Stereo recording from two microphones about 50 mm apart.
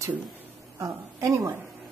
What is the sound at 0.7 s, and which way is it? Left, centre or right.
Speech, right.